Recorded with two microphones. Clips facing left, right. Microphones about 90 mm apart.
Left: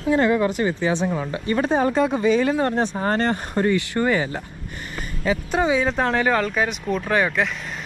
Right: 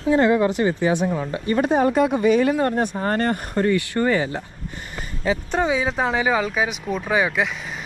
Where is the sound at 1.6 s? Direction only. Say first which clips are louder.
Right 2 dB; 55° right (ahead or behind).